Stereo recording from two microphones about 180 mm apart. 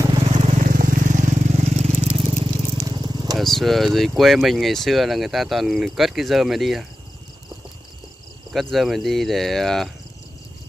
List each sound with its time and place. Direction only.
0.1 s vehicle: 35° right (ahead or behind)
2.8 s a sound: 25° right (ahead or behind)
3.3 s speech: centre (ahead or behind)
8.5 s speech: centre (ahead or behind)